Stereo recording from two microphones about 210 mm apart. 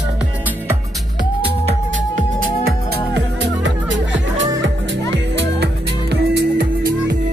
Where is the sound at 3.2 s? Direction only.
60° right (ahead or behind).